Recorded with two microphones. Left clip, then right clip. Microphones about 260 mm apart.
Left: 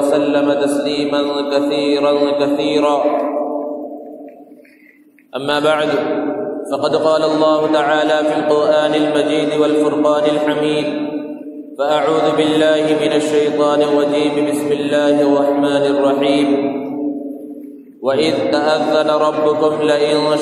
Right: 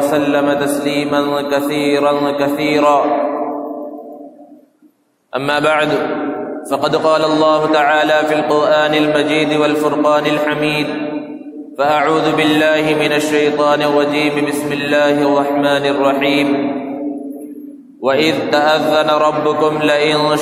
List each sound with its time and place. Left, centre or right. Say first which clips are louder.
0.1 s a man's voice: even; right
5.3 s a man's voice: right 1 dB; right
11.8 s a man's voice: right 1 dB; right
18.0 s a man's voice: right 1 dB; right